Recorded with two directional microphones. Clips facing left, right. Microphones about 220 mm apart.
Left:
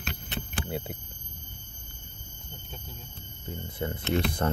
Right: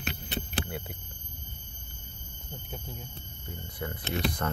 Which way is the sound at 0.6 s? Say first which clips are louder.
Left 5 dB; 25° left (ahead or behind).